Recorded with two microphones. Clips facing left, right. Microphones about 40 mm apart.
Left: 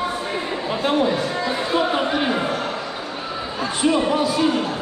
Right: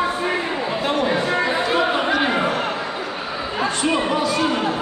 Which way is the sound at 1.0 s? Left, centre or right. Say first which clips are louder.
Right 2 dB; right.